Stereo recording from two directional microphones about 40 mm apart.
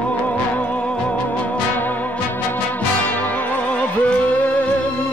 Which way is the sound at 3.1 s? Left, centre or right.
Left.